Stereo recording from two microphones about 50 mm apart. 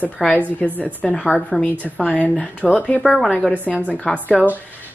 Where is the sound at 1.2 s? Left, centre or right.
Centre.